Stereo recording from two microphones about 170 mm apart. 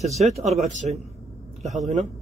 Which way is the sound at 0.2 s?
40° right (ahead or behind).